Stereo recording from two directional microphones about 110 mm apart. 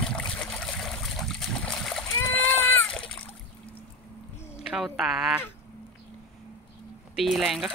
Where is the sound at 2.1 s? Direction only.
20° left (ahead or behind).